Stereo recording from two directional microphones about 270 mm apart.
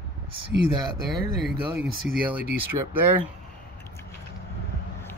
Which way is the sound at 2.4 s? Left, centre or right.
Right.